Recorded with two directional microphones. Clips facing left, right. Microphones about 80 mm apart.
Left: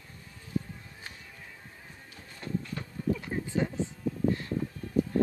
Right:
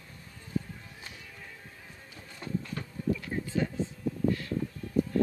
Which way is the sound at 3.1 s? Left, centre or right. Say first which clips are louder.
Left 1 dB; left.